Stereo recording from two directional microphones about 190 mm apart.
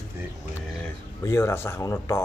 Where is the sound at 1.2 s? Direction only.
15° left (ahead or behind).